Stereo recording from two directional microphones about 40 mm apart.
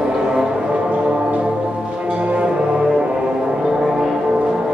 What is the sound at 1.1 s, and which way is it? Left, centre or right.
Church bell, right.